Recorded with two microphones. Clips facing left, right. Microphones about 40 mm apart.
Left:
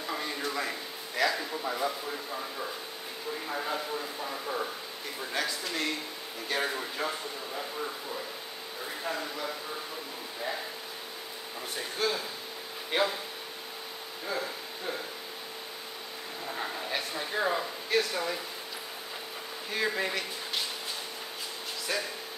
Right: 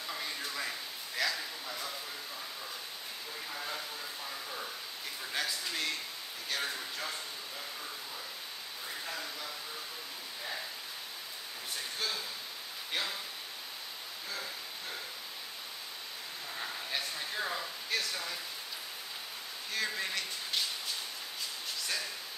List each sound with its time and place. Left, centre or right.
0.0 s a sound: centre
1.7 s speech: left
3.4 s speech: left
5.3 s speech: centre
6.5 s speech: left
9.0 s speech: left
12.0 s speech: centre
12.9 s speech: left
14.2 s speech: left
16.4 s a sound: left
19.7 s speech: centre